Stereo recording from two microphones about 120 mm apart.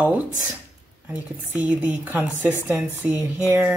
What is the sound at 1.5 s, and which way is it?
A woman's voice, 15° right (ahead or behind).